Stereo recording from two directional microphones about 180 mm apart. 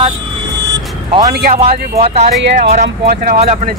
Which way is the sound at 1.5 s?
35° right (ahead or behind).